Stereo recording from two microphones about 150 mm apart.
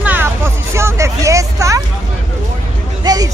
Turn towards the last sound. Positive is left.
turn(degrees=-25)  # may be behind; listen again after turning